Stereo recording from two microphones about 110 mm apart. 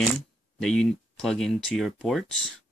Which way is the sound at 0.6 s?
5° left (ahead or behind).